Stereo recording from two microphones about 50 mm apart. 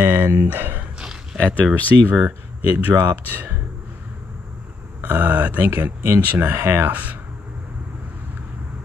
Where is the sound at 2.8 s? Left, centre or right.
Right.